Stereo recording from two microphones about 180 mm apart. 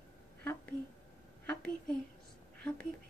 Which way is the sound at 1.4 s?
5° left (ahead or behind).